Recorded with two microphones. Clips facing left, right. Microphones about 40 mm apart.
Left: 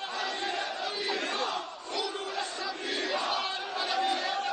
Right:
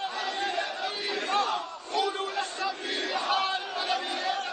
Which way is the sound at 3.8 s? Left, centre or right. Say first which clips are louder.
Left 5 dB; centre.